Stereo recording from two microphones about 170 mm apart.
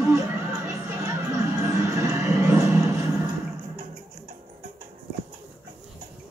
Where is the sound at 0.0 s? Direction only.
20° right (ahead or behind).